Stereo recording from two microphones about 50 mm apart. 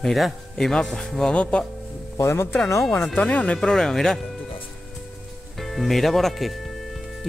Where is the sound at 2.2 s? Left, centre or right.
Left.